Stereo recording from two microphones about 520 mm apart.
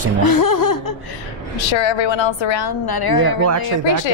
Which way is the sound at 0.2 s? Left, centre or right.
Left.